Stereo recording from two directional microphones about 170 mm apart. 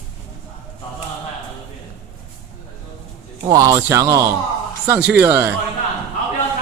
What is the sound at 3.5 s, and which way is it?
Speech, 20° right (ahead or behind).